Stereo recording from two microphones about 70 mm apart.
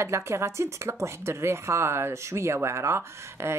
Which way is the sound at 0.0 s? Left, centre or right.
Right.